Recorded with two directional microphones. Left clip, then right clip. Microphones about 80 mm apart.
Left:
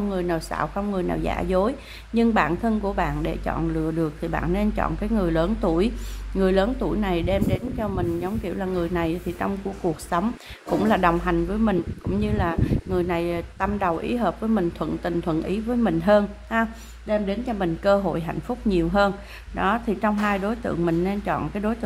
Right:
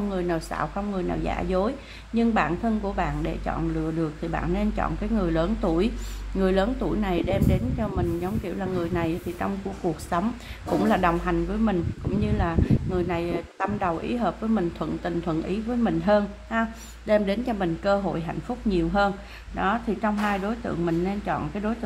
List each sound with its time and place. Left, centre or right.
0.1 s a woman's voice: left
0.7 s a woman's voice: left
17.1 s a woman's voice: right
17.6 s a woman's voice: left